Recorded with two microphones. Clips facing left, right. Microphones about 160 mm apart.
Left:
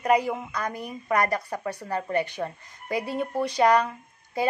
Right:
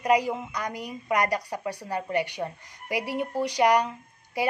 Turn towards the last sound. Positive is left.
turn(degrees=-15)  # may be behind; listen again after turning